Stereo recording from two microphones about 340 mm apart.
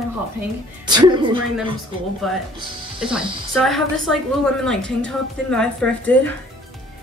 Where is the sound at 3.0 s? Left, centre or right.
Centre.